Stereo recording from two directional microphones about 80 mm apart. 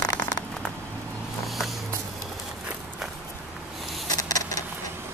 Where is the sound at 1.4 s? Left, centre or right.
Centre.